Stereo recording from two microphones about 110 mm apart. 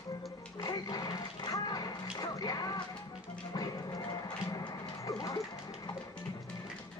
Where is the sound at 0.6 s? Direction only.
35° left (ahead or behind).